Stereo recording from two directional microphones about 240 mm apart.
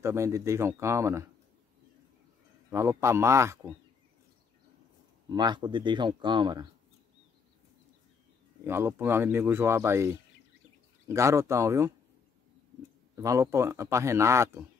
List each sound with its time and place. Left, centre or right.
0.0 s a man's voice: centre
2.7 s a man's voice: centre
5.3 s speech: centre
8.6 s a man's voice: centre
13.1 s a man's voice: centre